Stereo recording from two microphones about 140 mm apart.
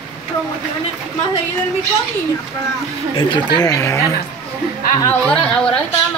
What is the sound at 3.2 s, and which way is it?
Speech, 35° left (ahead or behind).